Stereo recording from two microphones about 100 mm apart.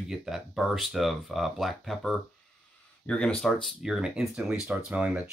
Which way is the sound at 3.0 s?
10° left (ahead or behind).